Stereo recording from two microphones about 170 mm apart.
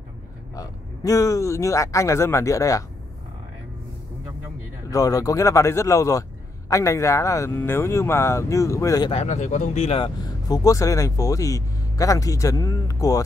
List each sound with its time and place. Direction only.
0.6 s speech: 20° left (ahead or behind)
4.9 s speech: 20° left (ahead or behind)
9.1 s speech: 40° left (ahead or behind); by 13.2 s 20° left (ahead or behind)